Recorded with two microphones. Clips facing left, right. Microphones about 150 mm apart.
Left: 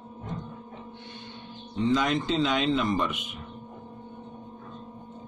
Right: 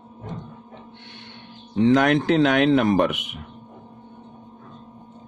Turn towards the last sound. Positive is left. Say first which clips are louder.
# right 8 dB
turn(degrees=-65)  # may be behind; listen again after turning